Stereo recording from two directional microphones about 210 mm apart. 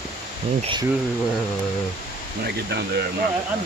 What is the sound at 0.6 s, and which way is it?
Speech, 25° right (ahead or behind).